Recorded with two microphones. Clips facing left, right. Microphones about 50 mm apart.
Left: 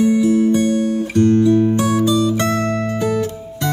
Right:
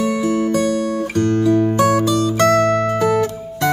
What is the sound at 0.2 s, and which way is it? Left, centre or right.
Music, right.